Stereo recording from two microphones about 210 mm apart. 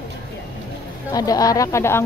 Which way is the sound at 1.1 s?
15° left (ahead or behind).